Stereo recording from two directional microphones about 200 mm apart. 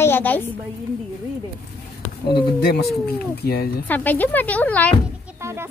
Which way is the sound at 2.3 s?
50° left (ahead or behind).